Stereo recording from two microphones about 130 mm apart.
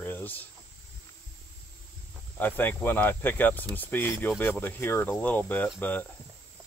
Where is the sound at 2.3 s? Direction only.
15° left (ahead or behind).